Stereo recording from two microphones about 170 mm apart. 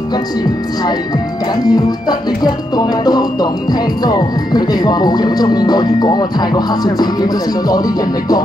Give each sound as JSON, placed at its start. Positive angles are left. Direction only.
{"t": 1.7, "sound": "music", "side_deg": 25}